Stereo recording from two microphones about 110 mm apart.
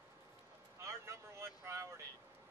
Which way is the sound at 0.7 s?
25° right (ahead or behind).